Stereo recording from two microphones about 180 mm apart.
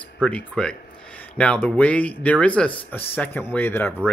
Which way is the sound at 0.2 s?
5° left (ahead or behind).